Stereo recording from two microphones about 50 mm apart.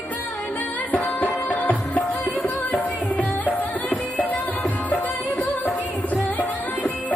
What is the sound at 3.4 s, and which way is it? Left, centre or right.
Music, left.